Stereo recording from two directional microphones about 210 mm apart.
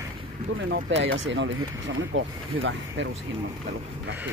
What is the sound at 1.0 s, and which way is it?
Speech, 60° right (ahead or behind).